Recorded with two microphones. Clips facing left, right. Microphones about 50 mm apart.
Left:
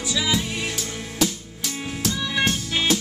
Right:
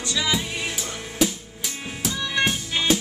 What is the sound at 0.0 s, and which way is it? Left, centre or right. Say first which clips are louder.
Music: left 1 dB; centre.